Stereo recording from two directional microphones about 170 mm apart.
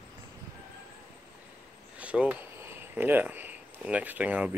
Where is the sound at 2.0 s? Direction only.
5° right (ahead or behind).